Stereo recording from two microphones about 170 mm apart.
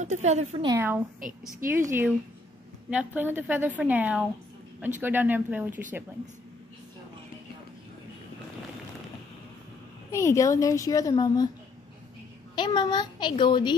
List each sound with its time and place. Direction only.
0.0 s speech: 45° right (ahead or behind)
0.7 s a woman's voice: 15° right (ahead or behind)
10.1 s a woman's voice: 20° left (ahead or behind)
12.5 s a woman's voice: 25° left (ahead or behind)